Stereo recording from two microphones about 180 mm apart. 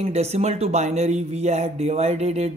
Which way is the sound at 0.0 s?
35° right (ahead or behind).